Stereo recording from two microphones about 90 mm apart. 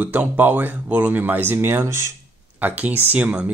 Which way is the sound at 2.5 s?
20° right (ahead or behind).